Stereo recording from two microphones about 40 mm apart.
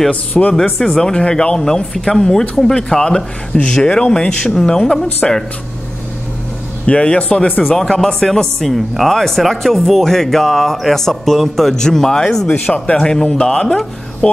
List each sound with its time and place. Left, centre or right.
0.1 s speech: left
0.7 s speech: centre
6.9 s speech: left
7.7 s speech: centre
12.4 s speech: left
12.9 s speech: centre